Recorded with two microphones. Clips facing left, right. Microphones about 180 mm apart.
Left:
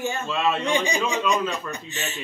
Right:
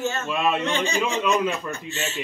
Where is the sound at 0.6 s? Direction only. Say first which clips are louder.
Left 1 dB; 15° left (ahead or behind).